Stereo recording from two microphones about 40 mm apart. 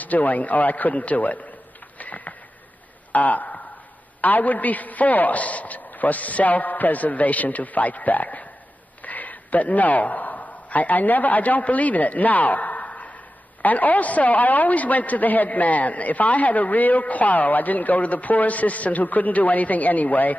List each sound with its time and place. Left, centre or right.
0.0 s a man's voice: left
2.0 s a sound: left
4.2 s a man's voice: left